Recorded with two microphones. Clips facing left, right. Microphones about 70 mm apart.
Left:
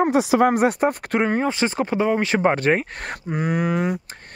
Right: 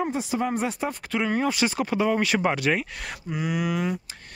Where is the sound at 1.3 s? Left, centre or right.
Left.